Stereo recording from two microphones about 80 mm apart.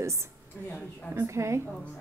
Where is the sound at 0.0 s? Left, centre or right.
Right.